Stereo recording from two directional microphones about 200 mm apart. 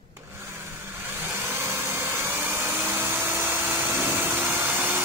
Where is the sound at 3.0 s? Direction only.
10° right (ahead or behind).